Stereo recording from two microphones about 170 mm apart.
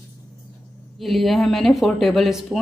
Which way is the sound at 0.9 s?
Centre (ahead or behind).